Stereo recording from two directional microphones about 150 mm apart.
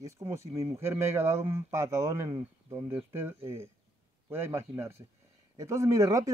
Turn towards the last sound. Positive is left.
turn(degrees=-20)  # may be behind; listen again after turning